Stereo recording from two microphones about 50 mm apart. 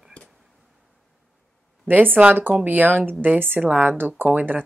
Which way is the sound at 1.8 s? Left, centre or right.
Right.